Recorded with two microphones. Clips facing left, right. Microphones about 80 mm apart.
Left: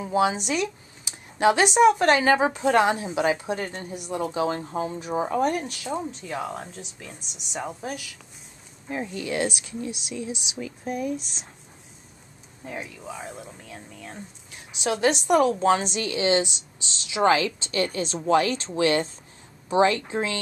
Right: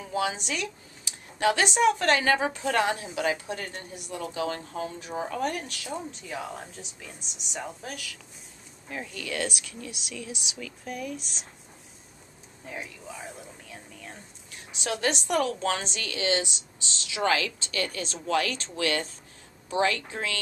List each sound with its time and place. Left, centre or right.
0.0 s speech: left
6.2 s speech: centre
8.8 s speech: left
12.6 s speech: centre; by 20.3 s left